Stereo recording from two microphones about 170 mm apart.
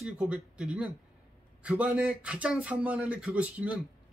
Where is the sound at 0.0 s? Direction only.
5° right (ahead or behind).